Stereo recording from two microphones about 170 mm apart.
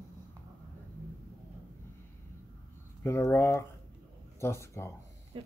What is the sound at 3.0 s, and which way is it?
Speech, 15° left (ahead or behind).